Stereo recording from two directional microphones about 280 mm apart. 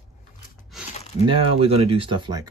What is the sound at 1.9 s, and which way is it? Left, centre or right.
Speech, centre.